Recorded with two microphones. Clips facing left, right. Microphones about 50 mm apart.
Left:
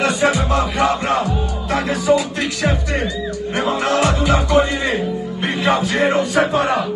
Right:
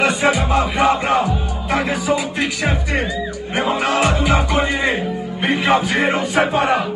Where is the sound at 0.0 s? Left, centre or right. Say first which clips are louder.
Even; right.